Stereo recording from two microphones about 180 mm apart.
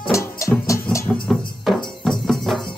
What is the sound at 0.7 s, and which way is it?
Music, 15° left (ahead or behind).